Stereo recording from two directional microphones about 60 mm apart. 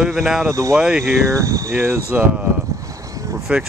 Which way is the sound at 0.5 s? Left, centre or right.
Right.